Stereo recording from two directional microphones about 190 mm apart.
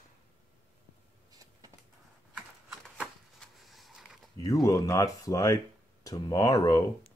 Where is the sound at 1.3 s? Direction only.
20° right (ahead or behind).